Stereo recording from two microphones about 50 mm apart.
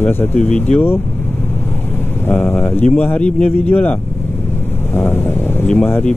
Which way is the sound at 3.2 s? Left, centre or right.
Left.